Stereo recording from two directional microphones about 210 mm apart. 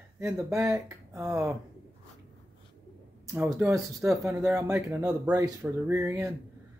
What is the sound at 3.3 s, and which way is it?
Speech, 10° right (ahead or behind).